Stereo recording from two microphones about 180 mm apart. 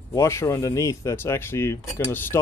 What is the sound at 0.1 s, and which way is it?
Speech, 15° left (ahead or behind).